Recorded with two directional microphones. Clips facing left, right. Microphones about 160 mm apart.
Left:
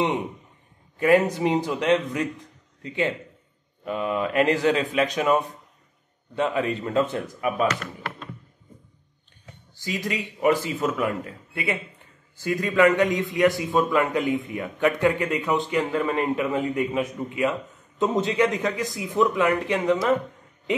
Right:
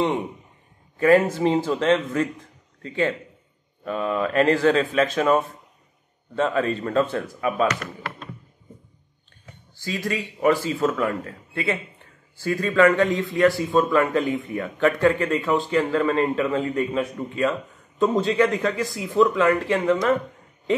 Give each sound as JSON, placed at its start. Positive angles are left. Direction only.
{"t": 0.9, "sound": "a man's voice", "side_deg": 15}
{"t": 9.8, "sound": "a man's voice", "side_deg": 15}